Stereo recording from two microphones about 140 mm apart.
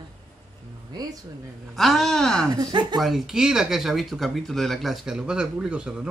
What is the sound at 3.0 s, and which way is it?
Speech, centre (ahead or behind).